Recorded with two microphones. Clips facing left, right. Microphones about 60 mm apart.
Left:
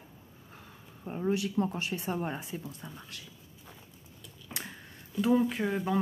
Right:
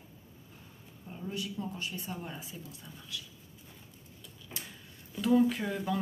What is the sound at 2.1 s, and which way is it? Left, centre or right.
Speech, left.